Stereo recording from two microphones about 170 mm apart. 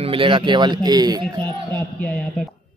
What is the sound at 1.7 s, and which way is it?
Speech, 5° left (ahead or behind).